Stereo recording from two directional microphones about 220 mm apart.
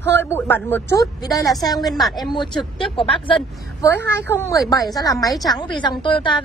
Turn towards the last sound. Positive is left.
turn(degrees=20)  # may be behind; listen again after turning